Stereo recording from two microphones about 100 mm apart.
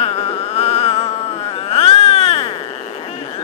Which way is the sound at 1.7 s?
90° left.